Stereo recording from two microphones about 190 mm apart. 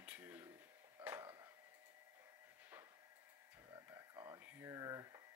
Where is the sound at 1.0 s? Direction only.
10° right (ahead or behind).